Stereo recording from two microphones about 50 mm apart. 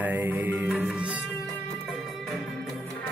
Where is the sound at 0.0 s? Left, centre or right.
Right.